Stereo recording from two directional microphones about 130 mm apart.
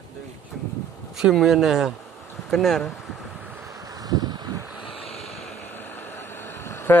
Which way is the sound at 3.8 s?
30° right (ahead or behind).